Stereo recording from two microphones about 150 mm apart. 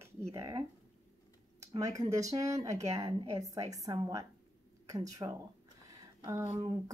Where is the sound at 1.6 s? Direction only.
20° right (ahead or behind).